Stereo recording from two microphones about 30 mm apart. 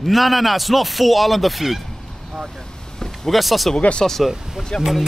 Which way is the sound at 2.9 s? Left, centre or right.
Centre.